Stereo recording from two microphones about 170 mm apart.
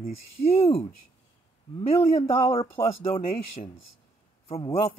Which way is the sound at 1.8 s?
40° left (ahead or behind).